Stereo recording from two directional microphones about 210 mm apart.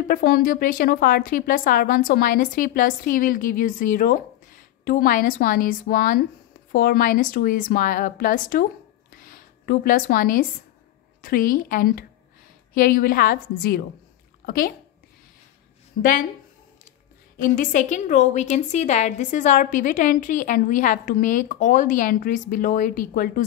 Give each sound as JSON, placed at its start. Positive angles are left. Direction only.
{"t": 0.1, "sound": "a woman's voice", "side_deg": 45}
{"t": 9.1, "sound": "a sound", "side_deg": 40}
{"t": 11.1, "sound": "a woman's voice", "side_deg": 45}
{"t": 16.0, "sound": "a woman's voice", "side_deg": 40}
{"t": 17.4, "sound": "a woman's voice", "side_deg": 40}